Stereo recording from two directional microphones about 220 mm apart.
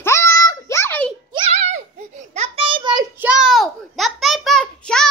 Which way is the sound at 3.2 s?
5° right (ahead or behind).